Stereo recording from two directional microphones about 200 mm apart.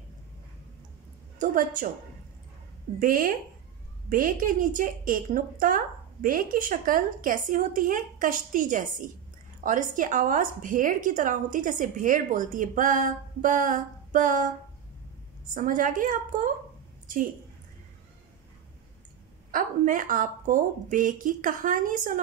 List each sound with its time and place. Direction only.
1.4 s a woman's voice: 40° right (ahead or behind)
3.0 s a woman's voice: 45° right (ahead or behind)
15.5 s a woman's voice: 40° right (ahead or behind)
19.5 s a woman's voice: 45° right (ahead or behind)